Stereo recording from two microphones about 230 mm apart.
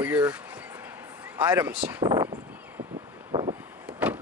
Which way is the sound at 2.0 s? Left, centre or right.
Centre.